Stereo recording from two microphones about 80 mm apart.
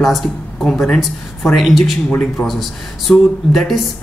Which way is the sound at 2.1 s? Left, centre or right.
Centre.